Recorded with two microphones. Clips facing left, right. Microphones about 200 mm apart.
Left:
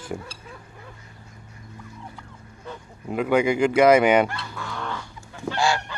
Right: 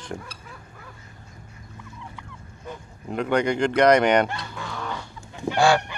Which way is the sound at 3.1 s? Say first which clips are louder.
Left 2 dB; 5° left (ahead or behind).